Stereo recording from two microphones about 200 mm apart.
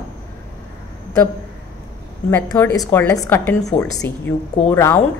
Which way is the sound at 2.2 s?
15° left (ahead or behind).